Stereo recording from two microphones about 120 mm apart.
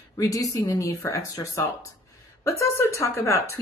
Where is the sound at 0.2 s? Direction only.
30° left (ahead or behind).